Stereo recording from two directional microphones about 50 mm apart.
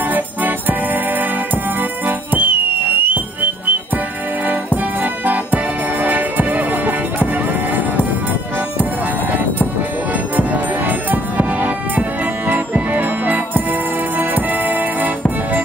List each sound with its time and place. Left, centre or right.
0.1 s music: right
1.8 s music: right
5.0 s music: right
10.3 s music: right